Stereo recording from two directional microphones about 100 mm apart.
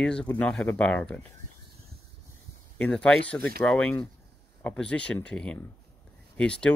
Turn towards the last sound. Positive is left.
turn(degrees=10)  # may be behind; listen again after turning